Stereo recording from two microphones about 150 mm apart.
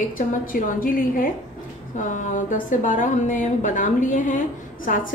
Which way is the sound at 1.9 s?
60° left (ahead or behind).